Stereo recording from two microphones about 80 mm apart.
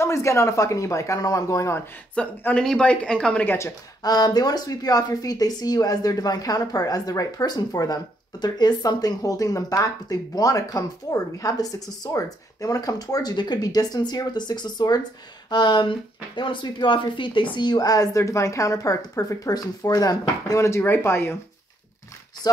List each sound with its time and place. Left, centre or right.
0.0 s speech: left
2.2 s speech: centre
4.0 s speech: left
15.5 s speech: left